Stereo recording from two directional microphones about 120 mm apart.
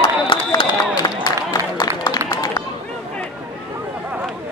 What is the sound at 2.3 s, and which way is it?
Run, 30° left (ahead or behind).